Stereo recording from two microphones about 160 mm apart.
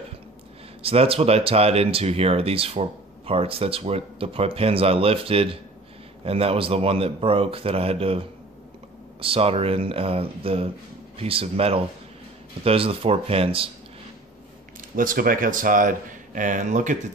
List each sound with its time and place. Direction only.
0.8 s speech: 35° right (ahead or behind)
15.0 s speech: 60° right (ahead or behind)